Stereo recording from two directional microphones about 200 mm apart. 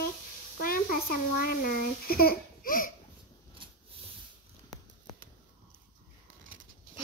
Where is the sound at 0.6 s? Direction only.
45° left (ahead or behind).